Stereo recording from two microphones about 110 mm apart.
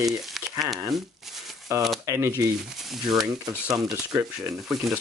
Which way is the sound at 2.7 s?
Centre (ahead or behind).